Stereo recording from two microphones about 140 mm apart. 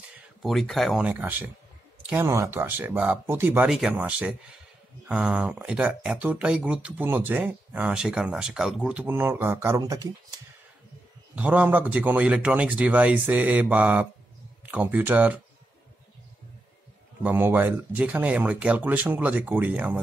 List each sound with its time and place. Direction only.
0.4 s speech: centre (ahead or behind)
2.0 s speech: 20° right (ahead or behind)
11.3 s speech: 10° right (ahead or behind)
17.2 s speech: 15° right (ahead or behind)